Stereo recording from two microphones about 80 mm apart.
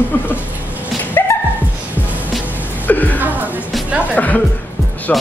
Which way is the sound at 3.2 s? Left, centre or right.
Right.